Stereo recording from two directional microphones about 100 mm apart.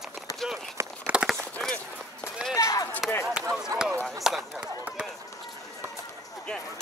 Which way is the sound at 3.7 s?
35° right (ahead or behind).